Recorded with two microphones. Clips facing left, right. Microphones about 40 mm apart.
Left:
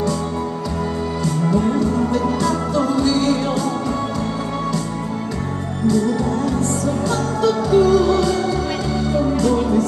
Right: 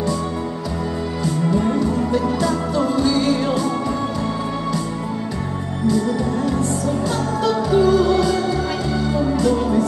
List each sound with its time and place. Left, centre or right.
1.5 s music: centre
7.1 s music: centre